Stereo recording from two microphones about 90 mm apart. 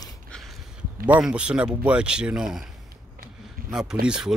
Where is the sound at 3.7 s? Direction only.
5° right (ahead or behind).